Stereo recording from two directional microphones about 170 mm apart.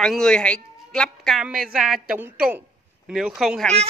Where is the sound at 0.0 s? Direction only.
5° left (ahead or behind).